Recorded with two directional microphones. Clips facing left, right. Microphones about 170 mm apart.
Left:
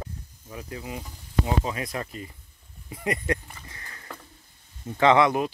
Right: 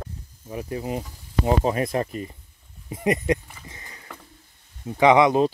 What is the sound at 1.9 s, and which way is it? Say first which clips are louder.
Speech: right 8 dB; 25° right (ahead or behind).